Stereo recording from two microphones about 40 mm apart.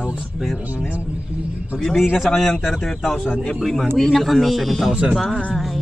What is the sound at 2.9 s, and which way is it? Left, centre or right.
A man's voice, centre.